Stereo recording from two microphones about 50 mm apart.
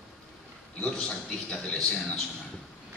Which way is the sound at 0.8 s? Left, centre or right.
Centre.